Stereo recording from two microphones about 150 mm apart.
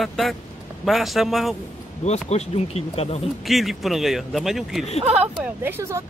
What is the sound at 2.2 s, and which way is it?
Speech, 45° left (ahead or behind).